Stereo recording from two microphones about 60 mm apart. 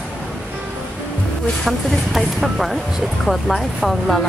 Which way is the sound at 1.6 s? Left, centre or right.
Centre.